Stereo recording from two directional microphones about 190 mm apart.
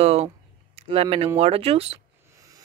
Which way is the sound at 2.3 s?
15° right (ahead or behind).